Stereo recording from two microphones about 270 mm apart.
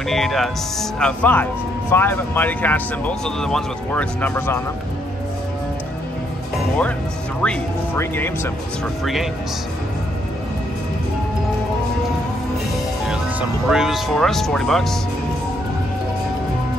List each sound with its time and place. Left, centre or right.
0.1 s speech: centre
7.4 s speech: centre
13.0 s speech: centre